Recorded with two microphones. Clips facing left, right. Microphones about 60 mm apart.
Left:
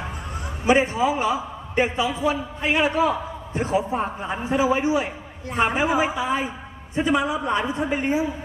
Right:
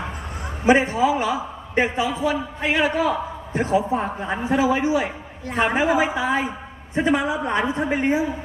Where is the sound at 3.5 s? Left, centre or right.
Right.